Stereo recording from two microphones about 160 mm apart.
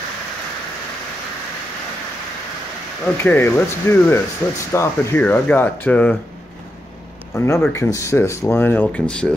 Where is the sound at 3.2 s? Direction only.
15° left (ahead or behind).